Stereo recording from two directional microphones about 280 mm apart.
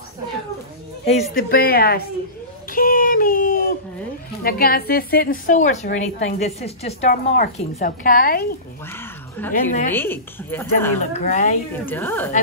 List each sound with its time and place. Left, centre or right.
1.3 s speech: left
2.7 s a sound: left
4.4 s a woman's voice: left
9.9 s speech: centre
11.0 s a woman's voice: left
11.7 s speech: centre